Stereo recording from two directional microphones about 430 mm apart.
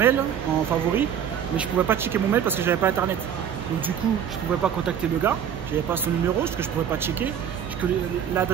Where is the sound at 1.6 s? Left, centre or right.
Centre.